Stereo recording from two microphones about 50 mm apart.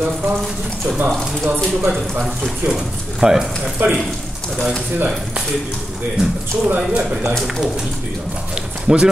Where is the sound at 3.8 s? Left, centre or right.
Right.